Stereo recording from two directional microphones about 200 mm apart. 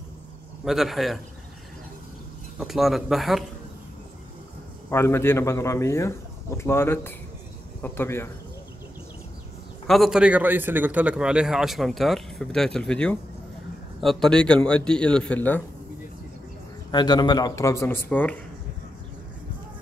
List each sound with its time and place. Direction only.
0.7 s a man's voice: centre (ahead or behind)
2.6 s a man's voice: centre (ahead or behind)
4.8 s speech: 10° left (ahead or behind)
9.8 s a man's voice: centre (ahead or behind)
16.9 s speech: 20° left (ahead or behind)